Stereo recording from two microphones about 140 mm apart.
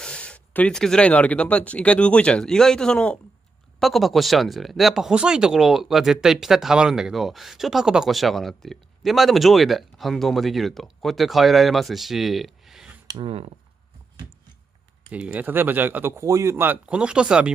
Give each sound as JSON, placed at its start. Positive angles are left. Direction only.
{"t": 0.0, "sound": "speech", "side_deg": 5}
{"t": 13.0, "sound": "a sound", "side_deg": -30}
{"t": 13.3, "sound": "speech", "side_deg": -45}
{"t": 15.0, "sound": "speech", "side_deg": -10}